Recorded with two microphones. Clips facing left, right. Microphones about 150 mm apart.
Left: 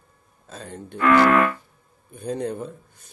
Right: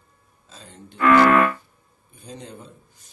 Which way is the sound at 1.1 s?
90° right.